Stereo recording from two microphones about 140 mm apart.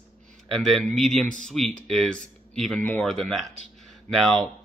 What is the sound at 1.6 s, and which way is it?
Speech, 50° right (ahead or behind).